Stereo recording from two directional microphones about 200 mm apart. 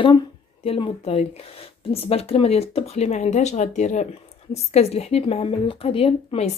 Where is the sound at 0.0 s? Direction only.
25° left (ahead or behind).